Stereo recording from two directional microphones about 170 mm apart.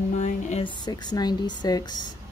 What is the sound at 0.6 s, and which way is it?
Speech, 25° left (ahead or behind).